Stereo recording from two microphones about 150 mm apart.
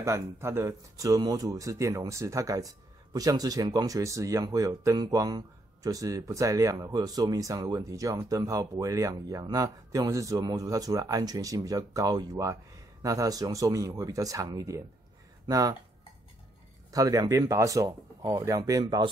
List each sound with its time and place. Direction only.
0.0 s speech: 20° right (ahead or behind)
16.9 s speech: 25° right (ahead or behind)